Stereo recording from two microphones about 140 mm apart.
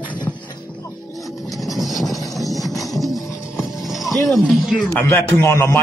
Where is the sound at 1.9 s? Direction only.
Centre (ahead or behind).